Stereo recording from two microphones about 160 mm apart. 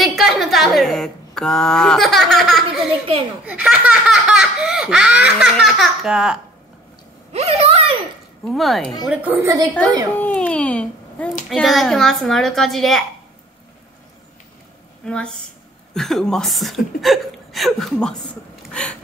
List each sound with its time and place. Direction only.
0.0 s a woman's voice: centre (ahead or behind)
3.4 s laughter: 10° right (ahead or behind)
7.3 s a sound: 40° right (ahead or behind)
8.5 s laughter: centre (ahead or behind)
9.0 s a woman's voice: 10° right (ahead or behind)
10.1 s a child's voice: 10° left (ahead or behind)
11.4 s laughter: centre (ahead or behind)
15.0 s laughter: 5° left (ahead or behind)
18.7 s a sound: 5° left (ahead or behind)